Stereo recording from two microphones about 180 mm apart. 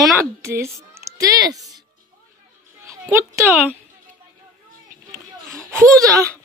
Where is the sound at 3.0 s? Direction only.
10° right (ahead or behind).